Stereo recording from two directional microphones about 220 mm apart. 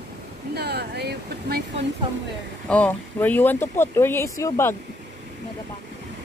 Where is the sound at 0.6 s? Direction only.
50° right (ahead or behind).